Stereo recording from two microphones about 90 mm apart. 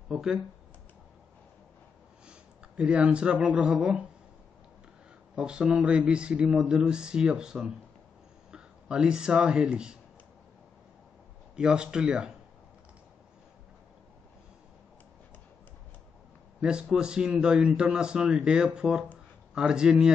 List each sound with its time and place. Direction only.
0.1 s speech: 5° right (ahead or behind)
2.8 s a man's voice: 15° right (ahead or behind)
5.3 s a man's voice: 10° right (ahead or behind)
11.5 s a man's voice: 10° right (ahead or behind)
16.6 s a man's voice: 10° right (ahead or behind)